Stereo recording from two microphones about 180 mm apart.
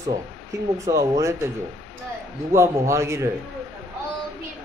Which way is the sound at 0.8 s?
15° right (ahead or behind).